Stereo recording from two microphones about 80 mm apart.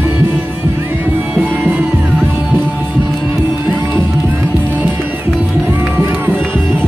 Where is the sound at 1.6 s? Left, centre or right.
Centre.